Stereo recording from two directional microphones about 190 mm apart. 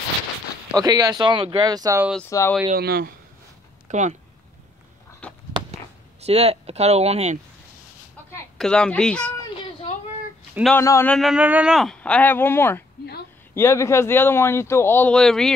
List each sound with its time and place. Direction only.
0.7 s speech: 20° right (ahead or behind)
2.2 s speech: 15° left (ahead or behind)
2.7 s speech: 55° right (ahead or behind)
3.9 s speech: 40° right (ahead or behind)
6.2 s speech: 30° right (ahead or behind)
8.5 s speech: 5° left (ahead or behind)
10.7 s speech: 15° left (ahead or behind)
11.1 s speech: 5° right (ahead or behind)